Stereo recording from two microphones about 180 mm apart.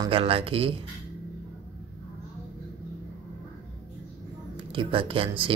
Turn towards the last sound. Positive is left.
turn(degrees=-30)  # may be behind; listen again after turning